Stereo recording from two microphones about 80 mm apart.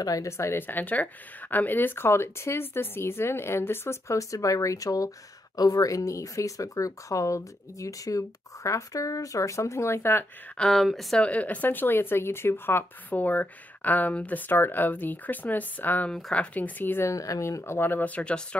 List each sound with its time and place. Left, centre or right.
0.0 s a woman's voice: left
10.6 s speech: centre
11.1 s speech: centre
16.1 s speech: centre
16.5 s speech: left
17.1 s speech: left; by 18.6 s centre